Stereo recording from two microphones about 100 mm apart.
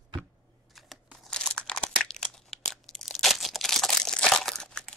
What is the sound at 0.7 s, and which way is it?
Crumpling, centre (ahead or behind).